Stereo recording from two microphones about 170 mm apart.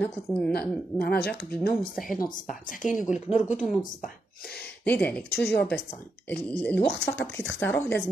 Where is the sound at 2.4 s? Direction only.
50° left (ahead or behind).